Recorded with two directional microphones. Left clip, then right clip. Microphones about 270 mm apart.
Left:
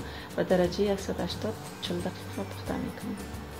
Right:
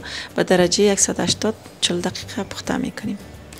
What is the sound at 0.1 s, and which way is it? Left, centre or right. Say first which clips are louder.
Speech: right 9 dB; right.